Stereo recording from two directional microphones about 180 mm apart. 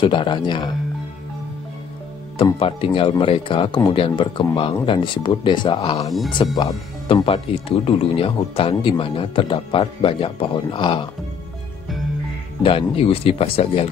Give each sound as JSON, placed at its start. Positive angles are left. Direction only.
{"t": 0.0, "sound": "speech", "side_deg": 25}
{"t": 2.3, "sound": "speech", "side_deg": 30}
{"t": 12.6, "sound": "speech", "side_deg": 30}